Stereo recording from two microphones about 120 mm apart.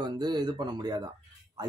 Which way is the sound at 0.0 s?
35° right (ahead or behind).